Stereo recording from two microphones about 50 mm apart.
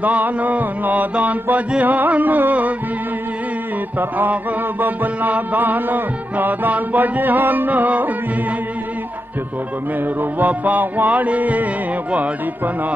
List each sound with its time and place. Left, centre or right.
0.0 s mantra: right
4.3 s mantra: right
10.4 s mantra: right